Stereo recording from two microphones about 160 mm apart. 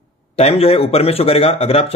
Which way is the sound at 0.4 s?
40° left (ahead or behind).